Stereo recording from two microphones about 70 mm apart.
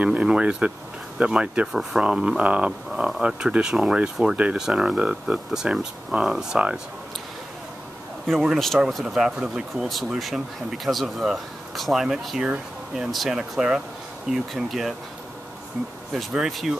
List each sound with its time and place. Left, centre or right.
0.0 s speech: centre
8.3 s speech: centre
9.8 s speech: centre
13.4 s speech: centre
16.3 s speech: centre